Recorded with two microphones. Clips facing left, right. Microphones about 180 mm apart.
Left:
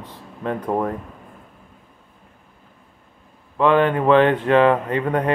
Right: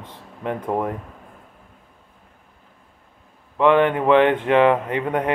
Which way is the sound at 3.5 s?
20° right (ahead or behind).